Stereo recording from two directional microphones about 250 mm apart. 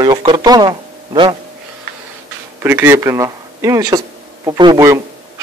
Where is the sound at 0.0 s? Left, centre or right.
Centre.